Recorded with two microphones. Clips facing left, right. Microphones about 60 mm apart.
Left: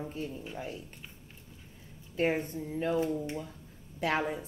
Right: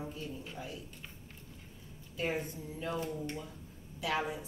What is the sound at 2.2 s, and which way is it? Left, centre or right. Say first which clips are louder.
Speech: left 6 dB; left.